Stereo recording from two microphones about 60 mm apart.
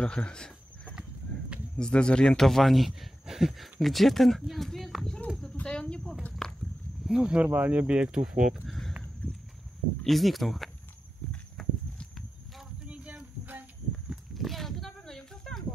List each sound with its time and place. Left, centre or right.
0.0 s a sound: centre
1.8 s speech: centre
5.0 s speech: centre
6.4 s a sound: centre
7.1 s speech: centre
7.4 s speech: right
8.5 s speech: centre
10.0 s speech: centre
11.6 s walk: centre
12.8 s boat: right
13.2 s a sound: right
14.4 s a sound: centre